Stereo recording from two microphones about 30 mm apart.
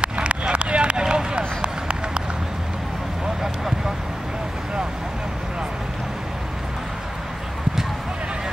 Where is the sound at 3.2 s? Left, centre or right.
Centre.